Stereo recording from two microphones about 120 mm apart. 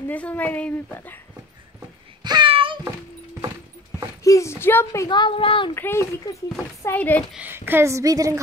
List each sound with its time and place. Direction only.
0.1 s speech: 10° left (ahead or behind)
2.2 s a sound: 45° right (ahead or behind)
4.2 s speech: 25° left (ahead or behind)
5.0 s speech: 40° left (ahead or behind)
5.8 s speech: 20° left (ahead or behind)
7.3 s a woman's voice: 15° right (ahead or behind)